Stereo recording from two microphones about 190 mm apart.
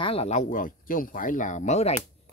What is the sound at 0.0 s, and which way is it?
Speech, 30° left (ahead or behind).